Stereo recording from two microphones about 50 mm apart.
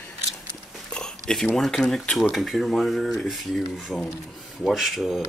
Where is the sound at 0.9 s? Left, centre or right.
Centre.